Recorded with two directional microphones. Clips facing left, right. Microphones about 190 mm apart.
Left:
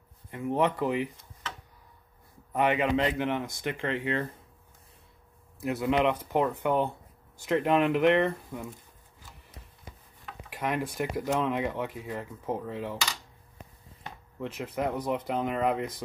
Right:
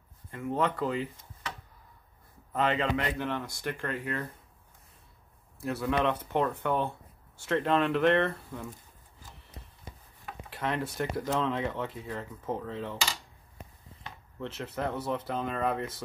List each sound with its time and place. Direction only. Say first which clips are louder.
0.3 s speech: left 3 dB; 15° left (ahead or behind)
2.5 s speech: left 3 dB; 15° left (ahead or behind)
3.9 s speech: left 4 dB; 90° left
5.6 s speech: left 3 dB; 20° left (ahead or behind)
10.5 s speech: left 2 dB; 10° left (ahead or behind)
14.0 s speech: left 2 dB; 10° left (ahead or behind)